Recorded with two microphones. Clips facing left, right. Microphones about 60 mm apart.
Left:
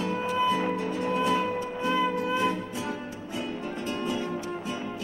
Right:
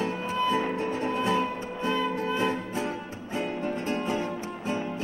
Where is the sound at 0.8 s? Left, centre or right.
Right.